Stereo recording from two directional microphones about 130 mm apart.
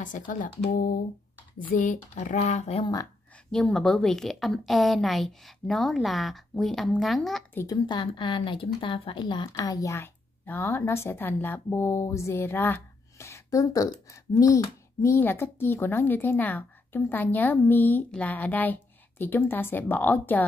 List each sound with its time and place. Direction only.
0.3 s speech: 90° left; by 2.8 s 60° left (ahead or behind)
2.8 s speech: 30° left (ahead or behind)
3.5 s a woman's voice: 5° left (ahead or behind)
7.6 s speech: 35° left (ahead or behind); by 20.4 s 15° left (ahead or behind)